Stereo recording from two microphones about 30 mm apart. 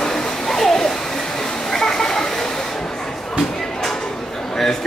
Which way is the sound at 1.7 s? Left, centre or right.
Centre.